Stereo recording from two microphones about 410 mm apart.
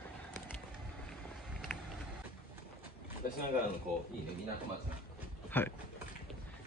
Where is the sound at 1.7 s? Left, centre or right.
Centre.